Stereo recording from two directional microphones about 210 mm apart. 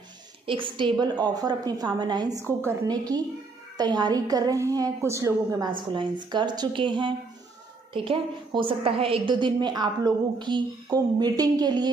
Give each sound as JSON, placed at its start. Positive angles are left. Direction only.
{"t": 0.5, "sound": "a woman's voice", "side_deg": -25}